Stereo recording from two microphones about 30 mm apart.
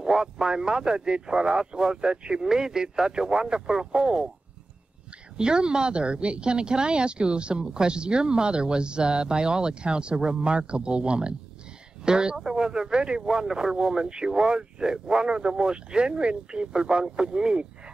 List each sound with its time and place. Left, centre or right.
0.0 s speech: right
5.4 s speech: right